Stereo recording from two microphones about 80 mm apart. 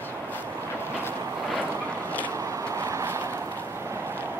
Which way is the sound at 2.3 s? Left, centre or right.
Right.